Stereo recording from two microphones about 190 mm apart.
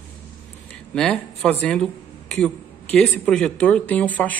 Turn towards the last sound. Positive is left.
turn(degrees=10)  # may be behind; listen again after turning